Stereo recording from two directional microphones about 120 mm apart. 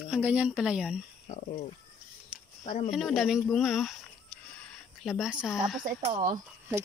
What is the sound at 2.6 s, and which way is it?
Speech, 90° left.